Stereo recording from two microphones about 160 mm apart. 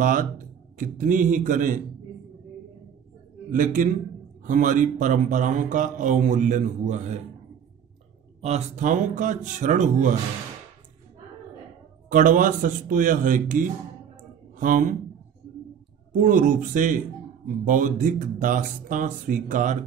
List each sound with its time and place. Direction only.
0.0 s speech: 60° right (ahead or behind)
3.4 s a man's voice: 55° right (ahead or behind)
8.4 s speech: 45° right (ahead or behind)
12.1 s speech: 55° right (ahead or behind)
16.1 s speech: 55° right (ahead or behind)